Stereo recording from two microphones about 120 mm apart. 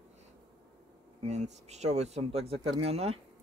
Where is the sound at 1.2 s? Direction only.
75° right (ahead or behind).